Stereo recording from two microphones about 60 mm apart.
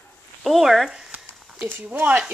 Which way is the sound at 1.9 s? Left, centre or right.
Right.